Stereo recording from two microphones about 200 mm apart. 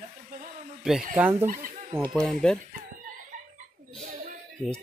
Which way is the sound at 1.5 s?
40° right (ahead or behind).